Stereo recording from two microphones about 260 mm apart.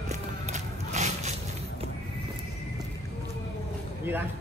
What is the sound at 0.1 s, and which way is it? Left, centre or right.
Music, right.